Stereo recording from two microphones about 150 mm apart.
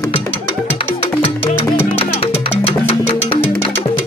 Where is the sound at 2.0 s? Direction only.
40° left (ahead or behind).